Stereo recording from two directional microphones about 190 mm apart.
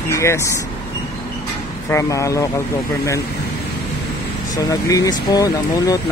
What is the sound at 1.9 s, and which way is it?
Speech, 15° left (ahead or behind).